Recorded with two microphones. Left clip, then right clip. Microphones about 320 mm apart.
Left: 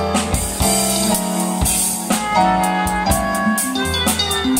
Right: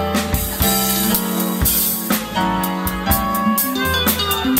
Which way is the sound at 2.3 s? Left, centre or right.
Centre.